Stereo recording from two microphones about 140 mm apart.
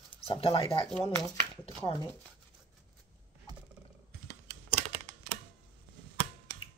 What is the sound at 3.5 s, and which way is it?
Roaring cats, 25° right (ahead or behind).